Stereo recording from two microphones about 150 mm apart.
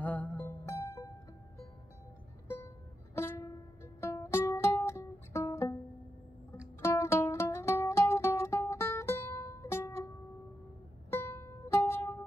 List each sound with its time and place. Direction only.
0.0 s music: 10° left (ahead or behind)
3.2 s music: 20° left (ahead or behind)
6.8 s music: 15° left (ahead or behind)